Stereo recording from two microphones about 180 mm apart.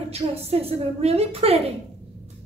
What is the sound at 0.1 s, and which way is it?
A woman's voice, 35° right (ahead or behind).